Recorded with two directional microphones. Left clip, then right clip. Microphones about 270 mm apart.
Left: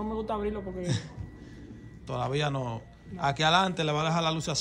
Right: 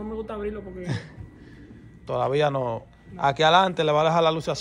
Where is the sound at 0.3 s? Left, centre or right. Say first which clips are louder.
Even; left.